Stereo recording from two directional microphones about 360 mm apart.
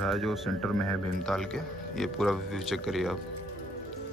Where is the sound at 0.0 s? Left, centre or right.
Centre.